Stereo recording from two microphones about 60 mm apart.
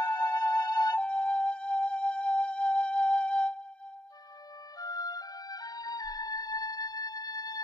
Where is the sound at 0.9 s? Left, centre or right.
Centre.